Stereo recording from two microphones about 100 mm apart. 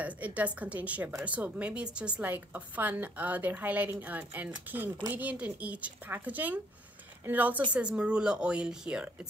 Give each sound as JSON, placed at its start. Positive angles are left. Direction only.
{"t": 0.0, "sound": "a woman's voice", "side_deg": -15}